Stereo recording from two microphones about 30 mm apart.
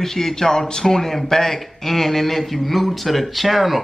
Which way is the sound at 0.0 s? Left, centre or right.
Centre.